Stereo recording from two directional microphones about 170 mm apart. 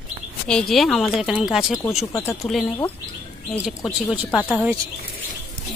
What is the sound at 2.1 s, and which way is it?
Speech, 20° left (ahead or behind).